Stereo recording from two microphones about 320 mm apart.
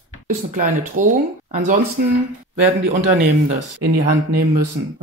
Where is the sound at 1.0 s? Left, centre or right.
Right.